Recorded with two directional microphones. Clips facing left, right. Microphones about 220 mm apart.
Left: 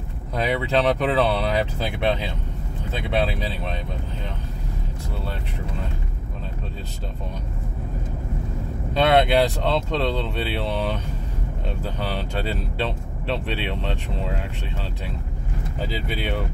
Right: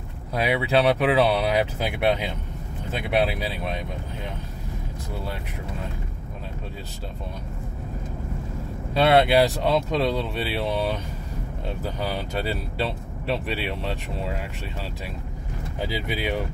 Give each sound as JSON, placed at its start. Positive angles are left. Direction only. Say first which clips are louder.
{"t": 0.3, "sound": "speech", "louder": "even", "side_deg": -10}
{"t": 8.9, "sound": "speech", "louder": "even", "side_deg": -5}
{"t": 15.8, "sound": "speech", "louder": "right 1 dB", "side_deg": -15}